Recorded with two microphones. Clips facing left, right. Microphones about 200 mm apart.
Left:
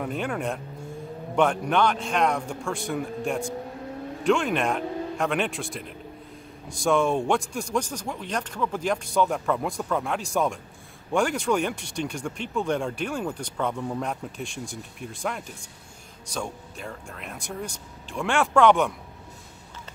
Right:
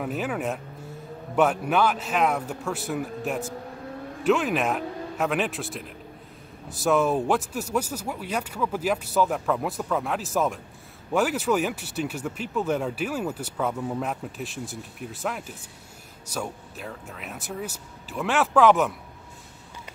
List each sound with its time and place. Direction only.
0.0 s a man's voice: 5° right (ahead or behind)